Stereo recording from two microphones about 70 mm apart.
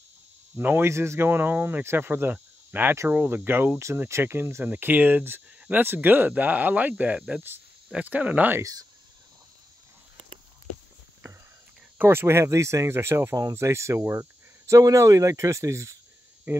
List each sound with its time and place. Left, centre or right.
0.6 s speech: right
12.0 s speech: right
14.7 s speech: right